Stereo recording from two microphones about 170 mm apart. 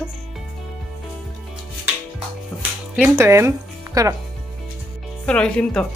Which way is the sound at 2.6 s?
10° right (ahead or behind).